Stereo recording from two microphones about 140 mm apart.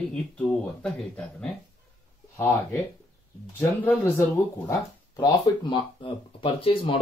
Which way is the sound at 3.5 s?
15° left (ahead or behind).